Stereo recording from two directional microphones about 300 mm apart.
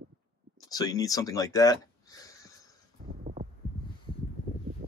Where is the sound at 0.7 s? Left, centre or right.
Centre.